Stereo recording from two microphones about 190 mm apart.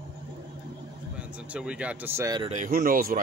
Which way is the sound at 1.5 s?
5° right (ahead or behind).